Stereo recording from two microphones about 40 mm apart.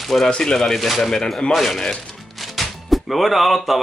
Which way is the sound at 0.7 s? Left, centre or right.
Centre.